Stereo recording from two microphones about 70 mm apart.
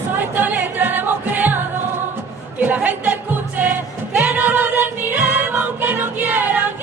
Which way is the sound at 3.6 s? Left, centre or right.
Right.